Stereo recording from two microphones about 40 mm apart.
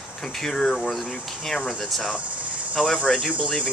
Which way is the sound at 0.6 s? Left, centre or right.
Left.